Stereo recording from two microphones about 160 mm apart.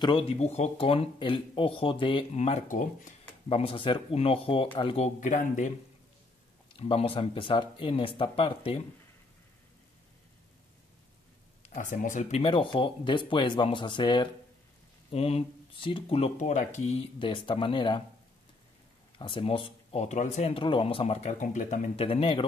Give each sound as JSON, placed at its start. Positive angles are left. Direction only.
{"t": 0.0, "sound": "speech", "side_deg": 35}
{"t": 3.4, "sound": "speech", "side_deg": 35}
{"t": 6.8, "sound": "speech", "side_deg": 40}
{"t": 11.7, "sound": "speech", "side_deg": 55}
{"t": 17.2, "sound": "speech", "side_deg": 30}
{"t": 19.1, "sound": "speech", "side_deg": 30}